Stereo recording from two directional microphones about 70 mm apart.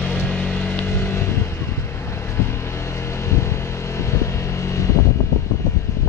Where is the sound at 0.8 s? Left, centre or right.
Left.